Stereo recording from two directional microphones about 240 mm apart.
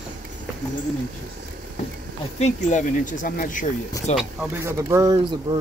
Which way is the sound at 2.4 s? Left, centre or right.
Left.